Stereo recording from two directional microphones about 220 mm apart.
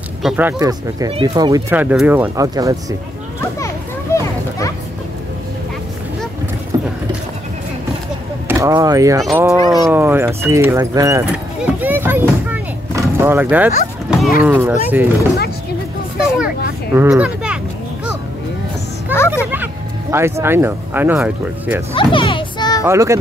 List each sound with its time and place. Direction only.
0.2 s speech: 10° right (ahead or behind)
3.5 s children playing: 15° left (ahead or behind)
6.7 s clip-clop: 15° right (ahead or behind)
8.5 s speech: 15° right (ahead or behind)
16.3 s a sound: 5° right (ahead or behind)
19.1 s a sound: 10° right (ahead or behind)
19.5 s speech: 10° right (ahead or behind)
21.9 s music: 25° left (ahead or behind)
22.8 s speech: 15° right (ahead or behind)